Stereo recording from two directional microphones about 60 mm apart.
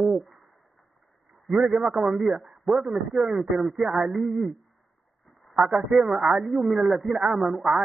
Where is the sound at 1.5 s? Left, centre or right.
Centre.